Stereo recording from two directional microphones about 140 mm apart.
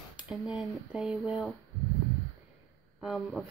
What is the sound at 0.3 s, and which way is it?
Speech, 5° right (ahead or behind).